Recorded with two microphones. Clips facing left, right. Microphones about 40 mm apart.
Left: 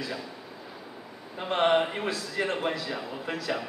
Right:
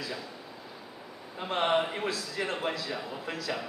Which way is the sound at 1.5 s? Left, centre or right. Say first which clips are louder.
Left 4 dB; left.